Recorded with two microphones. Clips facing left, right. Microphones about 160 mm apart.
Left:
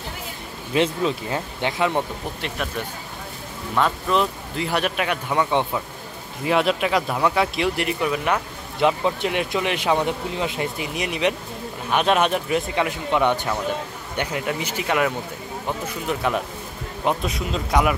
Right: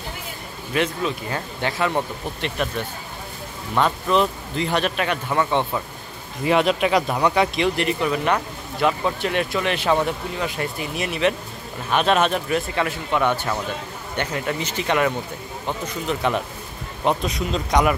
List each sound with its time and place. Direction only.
0.7 s speech: 25° left (ahead or behind)
3.7 s speech: centre (ahead or behind)
6.4 s speech: centre (ahead or behind)
8.8 s speech: 20° left (ahead or behind)